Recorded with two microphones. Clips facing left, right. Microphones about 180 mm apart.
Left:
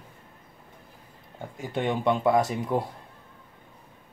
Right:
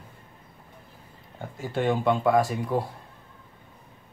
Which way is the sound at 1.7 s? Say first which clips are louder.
Right 1 dB; 20° left (ahead or behind).